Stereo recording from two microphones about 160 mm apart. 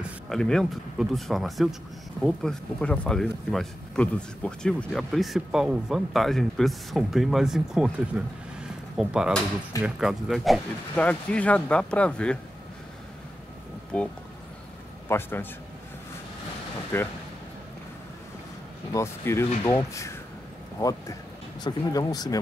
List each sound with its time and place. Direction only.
0.0 s speech: centre (ahead or behind)
8.9 s speech: 5° right (ahead or behind)
13.9 s speech: 5° left (ahead or behind)
16.9 s speech: 15° left (ahead or behind)
18.9 s speech: 15° left (ahead or behind)